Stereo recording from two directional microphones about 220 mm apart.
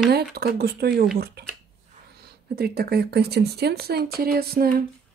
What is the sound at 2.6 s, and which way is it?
Speech, 45° right (ahead or behind).